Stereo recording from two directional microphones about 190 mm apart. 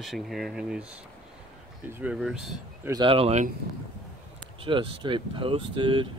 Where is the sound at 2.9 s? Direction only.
25° right (ahead or behind).